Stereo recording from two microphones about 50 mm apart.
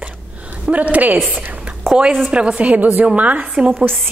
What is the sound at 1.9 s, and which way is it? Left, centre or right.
Speech, centre.